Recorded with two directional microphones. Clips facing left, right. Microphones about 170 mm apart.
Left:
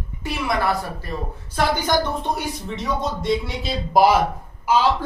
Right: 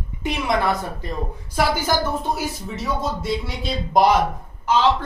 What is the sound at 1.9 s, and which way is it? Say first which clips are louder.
Speech: left 1 dB; 5° right (ahead or behind).